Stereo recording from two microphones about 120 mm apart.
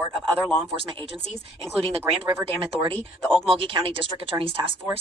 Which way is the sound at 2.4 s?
45° right (ahead or behind).